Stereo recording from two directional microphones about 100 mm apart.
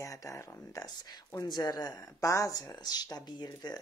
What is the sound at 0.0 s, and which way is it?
Speech, 35° left (ahead or behind).